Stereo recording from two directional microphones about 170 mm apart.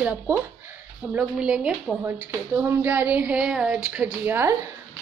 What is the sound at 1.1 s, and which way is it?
A woman's voice, 5° right (ahead or behind).